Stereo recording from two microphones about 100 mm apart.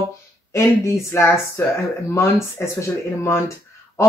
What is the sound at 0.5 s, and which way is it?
Speech, 30° left (ahead or behind).